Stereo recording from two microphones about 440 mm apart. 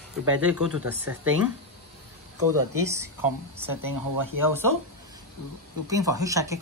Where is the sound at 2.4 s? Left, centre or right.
Right.